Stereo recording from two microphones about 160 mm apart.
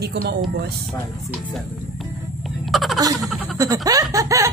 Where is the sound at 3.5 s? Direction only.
20° right (ahead or behind).